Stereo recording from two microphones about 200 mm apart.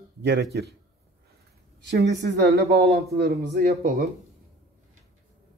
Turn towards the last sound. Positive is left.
turn(degrees=-50)  # may be behind; listen again after turning